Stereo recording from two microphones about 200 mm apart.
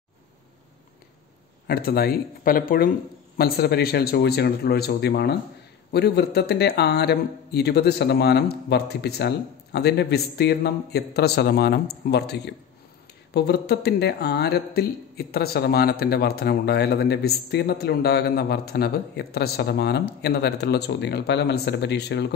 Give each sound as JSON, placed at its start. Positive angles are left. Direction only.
{"t": 1.7, "sound": "a man's voice", "side_deg": 50}